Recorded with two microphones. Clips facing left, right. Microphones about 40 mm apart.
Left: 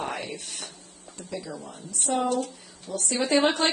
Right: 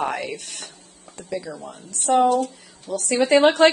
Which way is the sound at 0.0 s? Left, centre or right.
Right.